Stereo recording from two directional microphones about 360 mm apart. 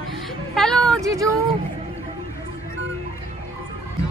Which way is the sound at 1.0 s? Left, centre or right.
Centre.